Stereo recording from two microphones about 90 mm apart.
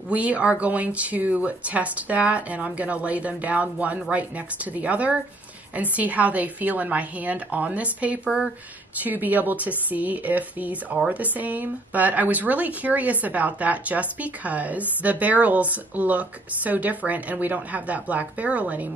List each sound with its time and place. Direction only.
0.1 s speech: 15° right (ahead or behind)